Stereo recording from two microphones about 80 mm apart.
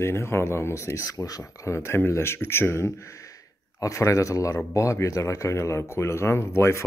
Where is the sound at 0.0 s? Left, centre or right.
Left.